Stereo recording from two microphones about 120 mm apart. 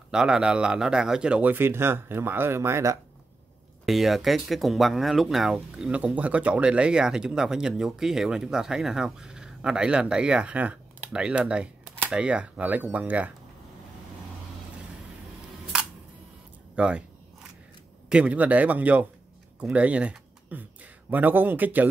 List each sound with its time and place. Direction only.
0.1 s speech: 5° right (ahead or behind); by 3.0 s 25° right (ahead or behind)
3.8 s speech: centre (ahead or behind)
16.7 s a sound: 10° right (ahead or behind)
18.1 s speech: 10° right (ahead or behind)